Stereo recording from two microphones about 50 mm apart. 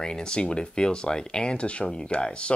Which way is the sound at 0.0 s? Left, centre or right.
Centre.